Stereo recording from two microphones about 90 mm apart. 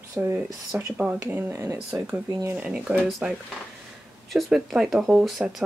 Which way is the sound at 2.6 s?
15° right (ahead or behind).